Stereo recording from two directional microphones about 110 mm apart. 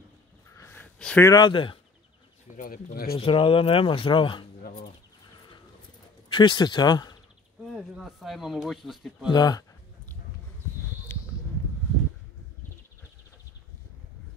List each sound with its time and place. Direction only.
0.6 s a sound: 20° left (ahead or behind)
1.2 s speech: 35° left (ahead or behind)
1.5 s speech: 50° left (ahead or behind)
2.5 s a sound: 20° right (ahead or behind)
3.2 s speech: 55° left (ahead or behind)
6.3 s speech: 45° left (ahead or behind)
7.6 s speech: centre (ahead or behind)
9.3 s speech: 35° left (ahead or behind)
11.1 s a sound: 20° left (ahead or behind)